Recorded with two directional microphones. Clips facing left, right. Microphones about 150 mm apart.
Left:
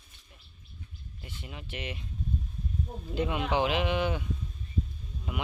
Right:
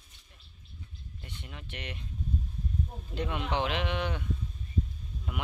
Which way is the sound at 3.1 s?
5° left (ahead or behind).